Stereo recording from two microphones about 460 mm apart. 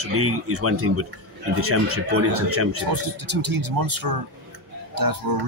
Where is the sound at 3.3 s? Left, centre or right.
Right.